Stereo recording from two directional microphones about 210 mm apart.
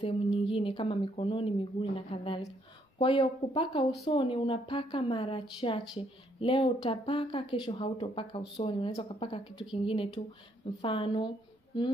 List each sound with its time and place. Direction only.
0.0 s a woman's voice: 25° left (ahead or behind)